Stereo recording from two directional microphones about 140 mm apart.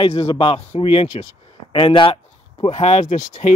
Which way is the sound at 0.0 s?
35° left (ahead or behind).